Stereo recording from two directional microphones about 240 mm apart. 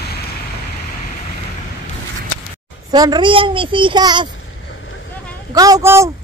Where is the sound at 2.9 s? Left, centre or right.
Centre.